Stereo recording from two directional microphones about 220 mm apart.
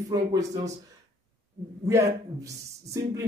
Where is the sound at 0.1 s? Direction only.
15° right (ahead or behind).